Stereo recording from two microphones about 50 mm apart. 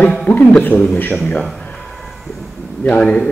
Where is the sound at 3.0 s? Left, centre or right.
Centre.